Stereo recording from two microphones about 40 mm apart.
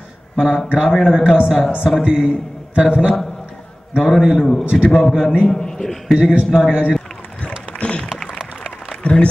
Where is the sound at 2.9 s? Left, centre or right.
Right.